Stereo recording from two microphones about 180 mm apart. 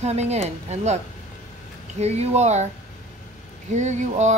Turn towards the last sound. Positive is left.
turn(degrees=-40)  # may be behind; listen again after turning